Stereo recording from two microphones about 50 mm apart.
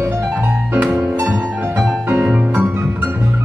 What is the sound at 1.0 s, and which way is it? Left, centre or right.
Music, right.